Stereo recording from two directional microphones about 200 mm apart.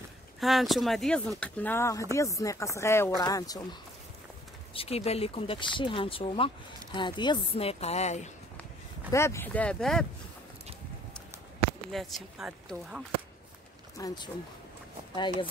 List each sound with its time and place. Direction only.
0.4 s speech: centre (ahead or behind); by 3.6 s 20° left (ahead or behind)
4.7 s speech: 30° left (ahead or behind)
9.1 s speech: 15° left (ahead or behind)
11.9 s speech: centre (ahead or behind)
13.9 s speech: 20° left (ahead or behind)